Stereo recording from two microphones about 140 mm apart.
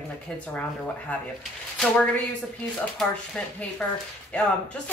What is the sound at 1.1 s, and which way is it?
Speech, 10° left (ahead or behind).